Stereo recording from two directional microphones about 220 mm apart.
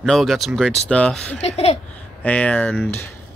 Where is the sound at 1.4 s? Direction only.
25° left (ahead or behind).